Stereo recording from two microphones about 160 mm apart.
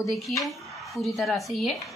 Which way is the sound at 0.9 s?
Centre (ahead or behind).